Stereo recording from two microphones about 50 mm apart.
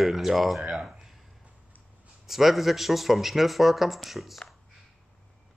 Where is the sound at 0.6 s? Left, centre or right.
Centre.